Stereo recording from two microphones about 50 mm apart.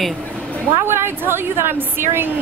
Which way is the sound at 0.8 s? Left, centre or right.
Right.